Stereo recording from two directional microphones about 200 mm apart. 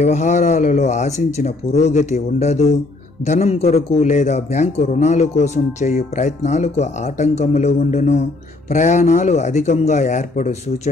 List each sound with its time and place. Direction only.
0.0 s a man's voice: 35° left (ahead or behind)